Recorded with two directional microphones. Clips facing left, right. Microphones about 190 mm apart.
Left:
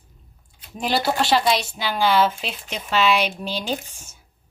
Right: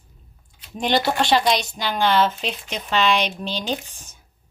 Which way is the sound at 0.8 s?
5° left (ahead or behind).